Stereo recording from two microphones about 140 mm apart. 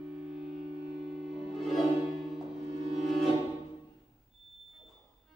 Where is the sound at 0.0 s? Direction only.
Centre (ahead or behind).